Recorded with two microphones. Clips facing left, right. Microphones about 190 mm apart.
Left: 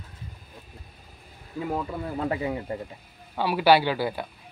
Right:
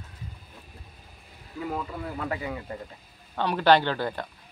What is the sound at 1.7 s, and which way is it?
Speech, 25° left (ahead or behind).